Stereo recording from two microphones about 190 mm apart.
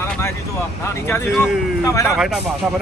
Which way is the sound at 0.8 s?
10° left (ahead or behind).